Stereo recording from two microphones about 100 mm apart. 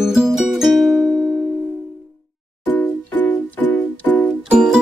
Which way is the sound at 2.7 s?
20° left (ahead or behind).